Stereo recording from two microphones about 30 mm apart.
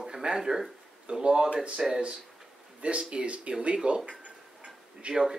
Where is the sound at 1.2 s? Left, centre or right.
Right.